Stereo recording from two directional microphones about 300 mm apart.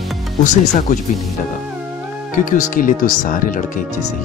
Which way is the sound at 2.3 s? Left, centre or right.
Left.